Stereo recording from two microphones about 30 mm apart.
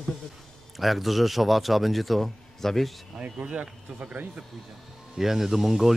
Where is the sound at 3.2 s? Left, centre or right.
Right.